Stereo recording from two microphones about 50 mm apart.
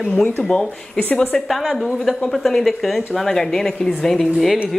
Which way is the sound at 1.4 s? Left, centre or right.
Centre.